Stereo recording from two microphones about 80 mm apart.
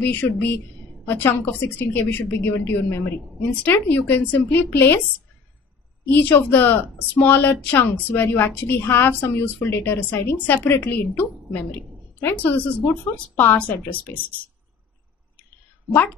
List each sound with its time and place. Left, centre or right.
0.0 s a woman's voice: left
6.0 s a woman's voice: left